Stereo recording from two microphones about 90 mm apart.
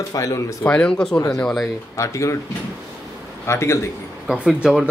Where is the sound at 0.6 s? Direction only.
10° left (ahead or behind).